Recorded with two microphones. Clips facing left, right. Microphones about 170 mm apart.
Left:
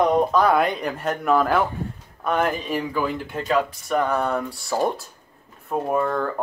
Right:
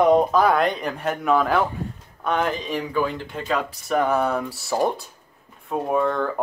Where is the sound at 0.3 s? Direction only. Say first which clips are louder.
Even; centre (ahead or behind).